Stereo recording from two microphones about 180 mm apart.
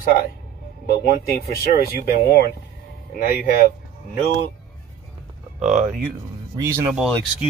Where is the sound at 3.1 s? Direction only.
50° left (ahead or behind).